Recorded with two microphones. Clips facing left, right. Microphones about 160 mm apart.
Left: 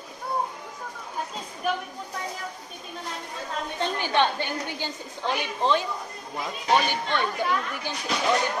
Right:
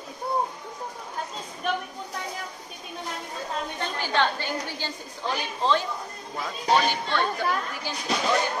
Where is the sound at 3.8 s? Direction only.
15° left (ahead or behind).